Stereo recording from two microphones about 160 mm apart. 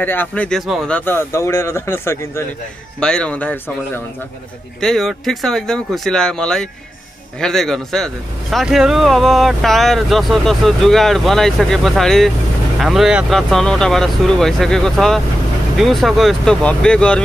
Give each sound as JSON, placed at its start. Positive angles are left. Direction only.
{"t": 0.0, "sound": "speech", "side_deg": 10}
{"t": 0.9, "sound": "speech", "side_deg": 15}
{"t": 3.0, "sound": "speech", "side_deg": 5}